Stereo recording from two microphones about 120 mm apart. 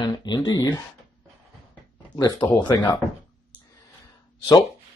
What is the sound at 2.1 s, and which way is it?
Speech, 40° left (ahead or behind).